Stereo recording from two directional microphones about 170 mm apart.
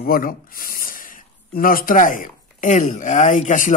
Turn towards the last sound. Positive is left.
turn(degrees=50)  # may be behind; listen again after turning